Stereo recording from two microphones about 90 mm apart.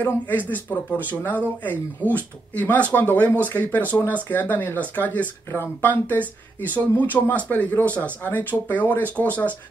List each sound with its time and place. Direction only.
0.0 s speech: 20° left (ahead or behind)